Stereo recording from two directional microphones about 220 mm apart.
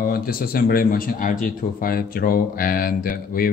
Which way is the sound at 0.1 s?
40° left (ahead or behind).